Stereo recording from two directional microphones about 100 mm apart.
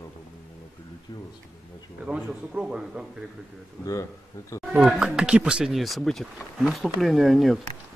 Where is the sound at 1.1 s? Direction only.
40° left (ahead or behind).